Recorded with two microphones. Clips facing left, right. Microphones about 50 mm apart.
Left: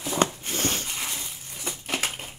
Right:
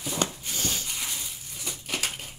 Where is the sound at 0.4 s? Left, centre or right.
Left.